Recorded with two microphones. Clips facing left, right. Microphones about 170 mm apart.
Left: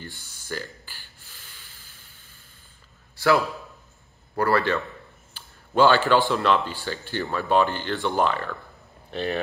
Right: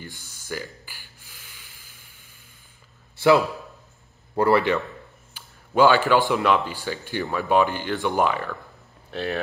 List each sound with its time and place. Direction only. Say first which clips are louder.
0.0 s speech: even; 10° right (ahead or behind)
0.8 s snort: right 1 dB; 10° right (ahead or behind)
3.2 s a man's voice: right 3 dB; 20° right (ahead or behind); by 9.4 s centre (ahead or behind)